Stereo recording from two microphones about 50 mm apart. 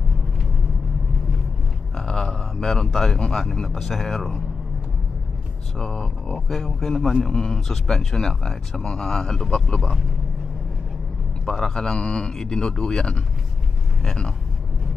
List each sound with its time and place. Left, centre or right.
2.0 s a sound: centre
3.5 s speech: centre
5.8 s speech: centre
11.4 s speech: centre